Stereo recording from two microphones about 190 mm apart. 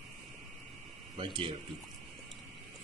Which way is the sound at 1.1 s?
25° right (ahead or behind).